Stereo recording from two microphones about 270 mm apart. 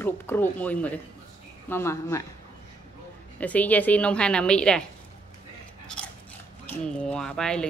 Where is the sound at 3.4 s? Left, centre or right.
Centre.